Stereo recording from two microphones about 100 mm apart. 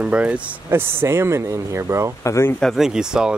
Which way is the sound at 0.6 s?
25° right (ahead or behind).